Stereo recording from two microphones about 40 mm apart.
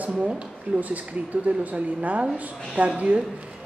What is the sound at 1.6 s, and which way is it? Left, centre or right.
Speech, right.